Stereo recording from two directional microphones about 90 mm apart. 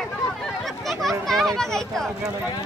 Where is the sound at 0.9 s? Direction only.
Centre (ahead or behind).